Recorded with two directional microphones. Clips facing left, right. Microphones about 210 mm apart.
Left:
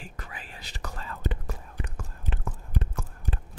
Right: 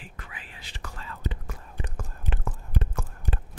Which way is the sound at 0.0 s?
40° left (ahead or behind).